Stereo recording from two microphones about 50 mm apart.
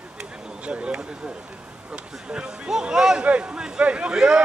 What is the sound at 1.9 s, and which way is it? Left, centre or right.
A man's voice, centre.